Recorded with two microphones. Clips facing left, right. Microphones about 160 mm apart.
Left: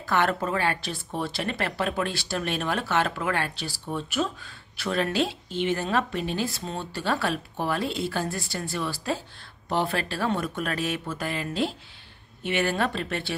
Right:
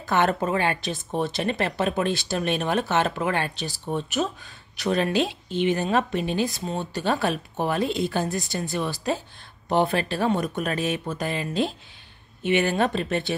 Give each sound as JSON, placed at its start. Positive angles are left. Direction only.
{"t": 0.0, "sound": "speech", "side_deg": -20}